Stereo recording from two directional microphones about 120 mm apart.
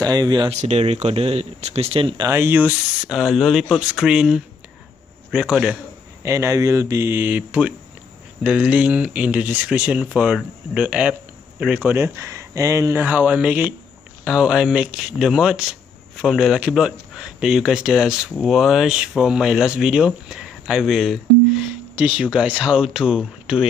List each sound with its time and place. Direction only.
0.0 s speech: 35° right (ahead or behind)
0.5 s speech: 65° right (ahead or behind); by 2.2 s 50° right (ahead or behind)
2.2 s speech: 20° right (ahead or behind)
3.1 s speech: 5° right (ahead or behind)
6.2 s speech: 25° right (ahead or behind)
13.0 s speech: 10° right (ahead or behind)